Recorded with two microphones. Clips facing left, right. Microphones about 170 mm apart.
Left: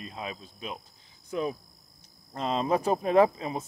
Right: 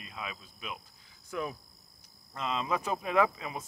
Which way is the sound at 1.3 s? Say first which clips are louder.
Left 5 dB; 25° left (ahead or behind).